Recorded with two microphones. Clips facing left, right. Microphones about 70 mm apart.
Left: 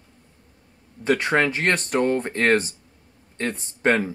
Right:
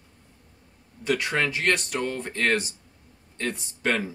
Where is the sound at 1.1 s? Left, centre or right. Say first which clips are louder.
Left 5 dB; left.